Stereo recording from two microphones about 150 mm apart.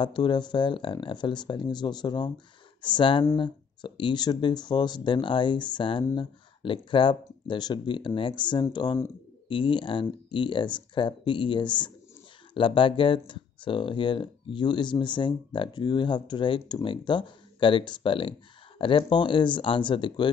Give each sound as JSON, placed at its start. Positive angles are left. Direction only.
{"t": 0.0, "sound": "speech", "side_deg": 30}